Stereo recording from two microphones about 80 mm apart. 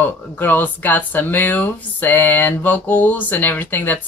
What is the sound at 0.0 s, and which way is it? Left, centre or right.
Speech, left.